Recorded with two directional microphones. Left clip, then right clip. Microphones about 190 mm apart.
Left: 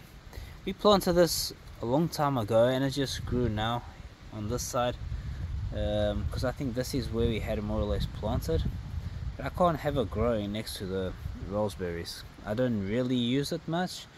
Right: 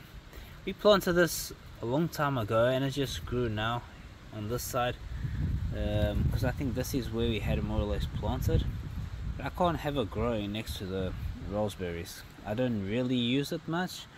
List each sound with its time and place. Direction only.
0.7 s speech: 30° left (ahead or behind)
9.4 s speech: 30° left (ahead or behind)
12.4 s speech: 35° left (ahead or behind)